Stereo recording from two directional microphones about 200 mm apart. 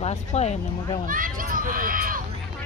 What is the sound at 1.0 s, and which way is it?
Speech, 45° right (ahead or behind).